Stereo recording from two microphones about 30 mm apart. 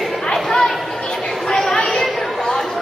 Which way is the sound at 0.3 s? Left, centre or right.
Centre.